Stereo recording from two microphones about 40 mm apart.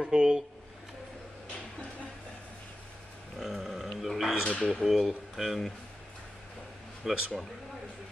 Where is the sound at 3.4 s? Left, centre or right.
Centre.